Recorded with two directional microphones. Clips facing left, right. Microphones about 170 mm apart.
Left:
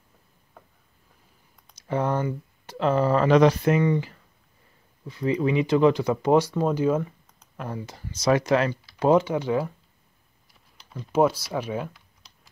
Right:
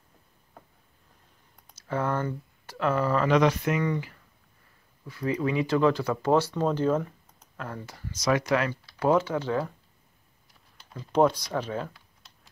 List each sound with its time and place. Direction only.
1.8 s speech: 20° left (ahead or behind)
10.9 s speech: 5° left (ahead or behind)